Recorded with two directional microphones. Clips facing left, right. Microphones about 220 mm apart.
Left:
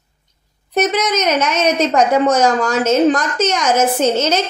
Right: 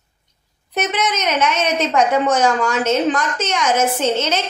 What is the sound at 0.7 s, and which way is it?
A woman's voice, 40° left (ahead or behind).